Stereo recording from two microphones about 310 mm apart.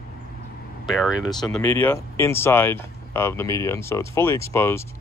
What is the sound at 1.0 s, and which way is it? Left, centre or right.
Speech, centre.